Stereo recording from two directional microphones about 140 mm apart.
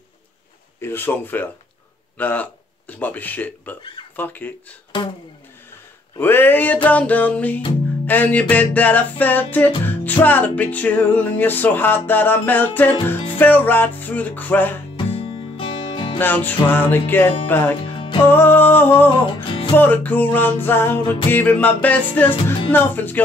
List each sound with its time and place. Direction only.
0.7 s music: 15° left (ahead or behind)
2.1 s speech: 10° left (ahead or behind)
2.9 s music: 10° left (ahead or behind)
6.1 s music: 15° left (ahead or behind)
15.0 s music: 40° left (ahead or behind)
16.2 s music: 15° left (ahead or behind)
17.9 s music: 35° left (ahead or behind)
18.2 s music: 15° left (ahead or behind)